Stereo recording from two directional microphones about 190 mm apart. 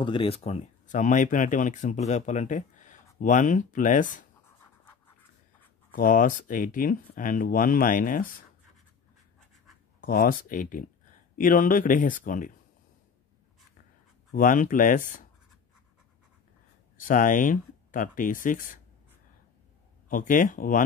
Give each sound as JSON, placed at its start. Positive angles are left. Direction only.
{"t": 0.0, "sound": "speech", "side_deg": 25}
{"t": 5.9, "sound": "speech", "side_deg": 45}
{"t": 9.9, "sound": "speech", "side_deg": 50}
{"t": 14.3, "sound": "speech", "side_deg": 45}
{"t": 16.9, "sound": "speech", "side_deg": 45}
{"t": 20.1, "sound": "speech", "side_deg": 45}